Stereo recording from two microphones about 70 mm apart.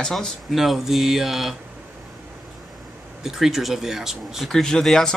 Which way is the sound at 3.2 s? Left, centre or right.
Centre.